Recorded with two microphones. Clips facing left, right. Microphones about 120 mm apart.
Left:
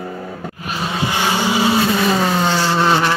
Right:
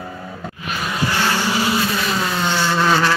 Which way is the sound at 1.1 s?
15° left (ahead or behind).